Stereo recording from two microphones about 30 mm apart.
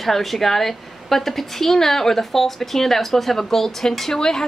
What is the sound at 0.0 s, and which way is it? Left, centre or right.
A woman's voice, centre.